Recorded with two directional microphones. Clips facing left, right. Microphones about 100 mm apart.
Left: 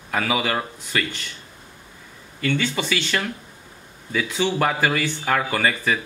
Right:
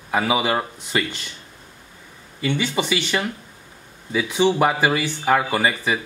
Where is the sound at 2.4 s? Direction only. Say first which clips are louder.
Right 1 dB; 15° right (ahead or behind).